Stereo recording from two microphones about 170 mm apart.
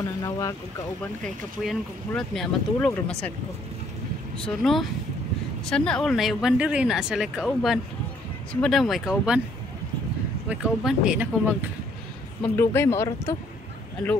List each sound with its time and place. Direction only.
0.2 s speech: 20° left (ahead or behind)
1.2 s speech: centre (ahead or behind)
4.4 s speech: centre (ahead or behind)
10.5 s speech: 5° right (ahead or behind)
12.5 s speech: 15° left (ahead or behind)